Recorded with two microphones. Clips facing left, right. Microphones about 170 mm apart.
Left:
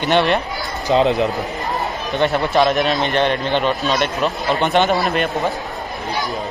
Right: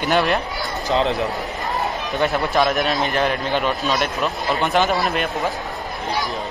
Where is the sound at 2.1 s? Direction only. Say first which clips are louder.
Left 3 dB; centre (ahead or behind).